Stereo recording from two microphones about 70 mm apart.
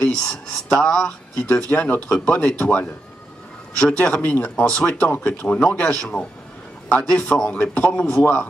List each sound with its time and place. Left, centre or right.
0.1 s speech: centre